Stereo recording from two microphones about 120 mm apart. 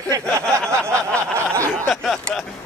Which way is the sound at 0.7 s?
25° right (ahead or behind).